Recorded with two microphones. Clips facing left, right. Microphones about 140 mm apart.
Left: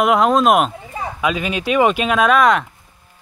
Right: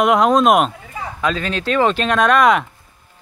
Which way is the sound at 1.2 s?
10° left (ahead or behind).